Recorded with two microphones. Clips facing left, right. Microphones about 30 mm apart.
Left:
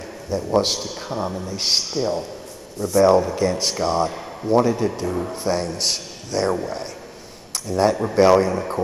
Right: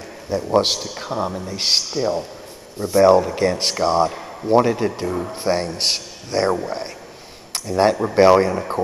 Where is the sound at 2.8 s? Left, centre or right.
Right.